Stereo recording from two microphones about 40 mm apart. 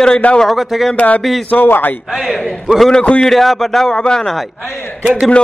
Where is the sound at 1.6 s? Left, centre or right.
Left.